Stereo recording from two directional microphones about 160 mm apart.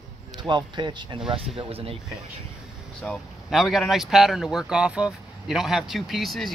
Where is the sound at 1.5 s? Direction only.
35° right (ahead or behind).